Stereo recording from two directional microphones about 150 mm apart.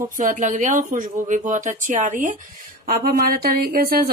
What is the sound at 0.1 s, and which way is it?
Speech, 60° right (ahead or behind).